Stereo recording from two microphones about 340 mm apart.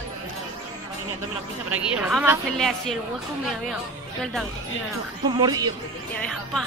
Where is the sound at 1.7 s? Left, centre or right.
Centre.